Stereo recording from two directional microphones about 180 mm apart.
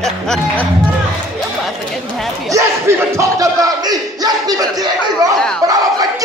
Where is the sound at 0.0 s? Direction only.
5° left (ahead or behind).